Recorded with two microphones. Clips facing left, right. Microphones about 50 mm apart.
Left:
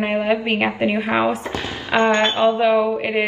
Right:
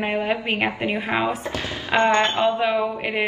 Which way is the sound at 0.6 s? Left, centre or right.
Left.